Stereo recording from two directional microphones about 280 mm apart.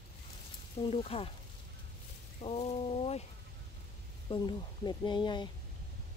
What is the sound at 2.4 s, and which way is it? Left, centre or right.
Speech, left.